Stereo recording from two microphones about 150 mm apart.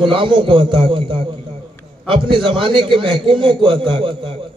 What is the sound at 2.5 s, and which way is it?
A man's voice, 35° right (ahead or behind).